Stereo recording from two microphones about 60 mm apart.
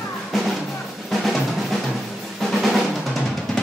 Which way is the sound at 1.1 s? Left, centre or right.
Centre.